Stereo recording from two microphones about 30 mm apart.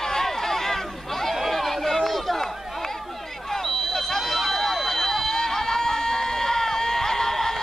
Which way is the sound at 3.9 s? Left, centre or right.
Centre.